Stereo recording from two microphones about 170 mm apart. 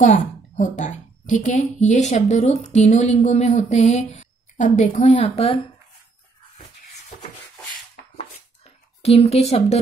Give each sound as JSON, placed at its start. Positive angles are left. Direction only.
{"t": 0.0, "sound": "a woman's voice", "side_deg": 45}
{"t": 9.0, "sound": "speech", "side_deg": 35}